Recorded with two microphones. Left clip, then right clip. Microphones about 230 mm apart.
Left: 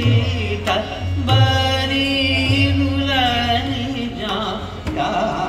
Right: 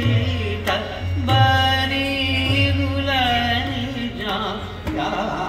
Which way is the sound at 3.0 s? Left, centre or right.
Left.